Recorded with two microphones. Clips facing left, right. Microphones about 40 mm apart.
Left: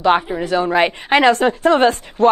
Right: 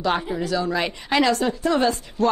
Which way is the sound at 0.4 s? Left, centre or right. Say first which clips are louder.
Left 7 dB; left.